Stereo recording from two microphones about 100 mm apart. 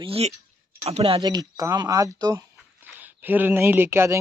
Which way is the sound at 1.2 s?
40° right (ahead or behind).